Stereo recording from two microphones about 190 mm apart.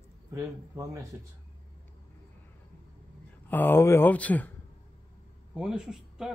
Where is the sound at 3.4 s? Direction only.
10° left (ahead or behind).